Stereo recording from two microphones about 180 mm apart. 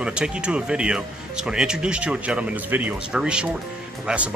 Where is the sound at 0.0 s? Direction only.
5° right (ahead or behind).